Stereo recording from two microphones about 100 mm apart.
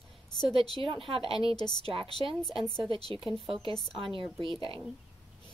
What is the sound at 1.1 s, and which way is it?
Speech, 65° right (ahead or behind).